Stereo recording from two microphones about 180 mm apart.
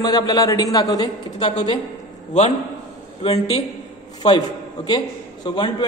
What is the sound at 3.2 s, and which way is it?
Speech, 35° left (ahead or behind).